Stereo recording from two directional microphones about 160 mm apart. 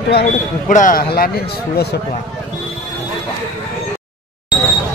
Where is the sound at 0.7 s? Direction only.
60° left (ahead or behind).